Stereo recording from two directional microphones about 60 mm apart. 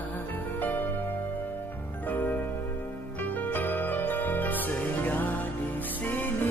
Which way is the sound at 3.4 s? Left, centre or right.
Left.